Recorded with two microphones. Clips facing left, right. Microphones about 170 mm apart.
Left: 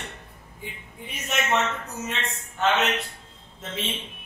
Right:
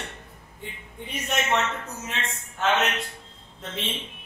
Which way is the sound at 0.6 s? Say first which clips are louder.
Right 1 dB; centre (ahead or behind).